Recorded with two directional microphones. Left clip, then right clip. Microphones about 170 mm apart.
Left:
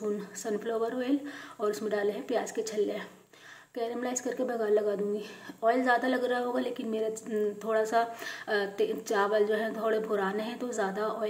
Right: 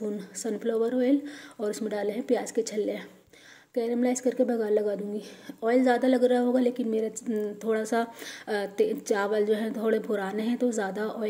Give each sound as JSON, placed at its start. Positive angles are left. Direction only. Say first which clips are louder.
{"t": 0.4, "sound": "a woman's voice", "louder": "right 5 dB", "side_deg": -50}